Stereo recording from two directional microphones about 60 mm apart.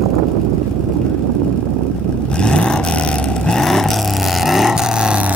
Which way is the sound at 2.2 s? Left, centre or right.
Centre.